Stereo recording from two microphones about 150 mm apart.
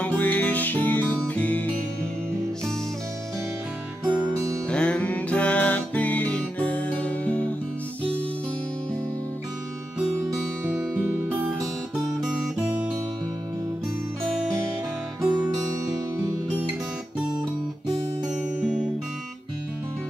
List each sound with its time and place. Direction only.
0.0 s music: 10° left (ahead or behind)
4.6 s music: 5° left (ahead or behind)
10.8 s music: 10° right (ahead or behind)
12.2 s guitar: 5° right (ahead or behind)
15.2 s music: 10° right (ahead or behind)
18.6 s music: 5° right (ahead or behind)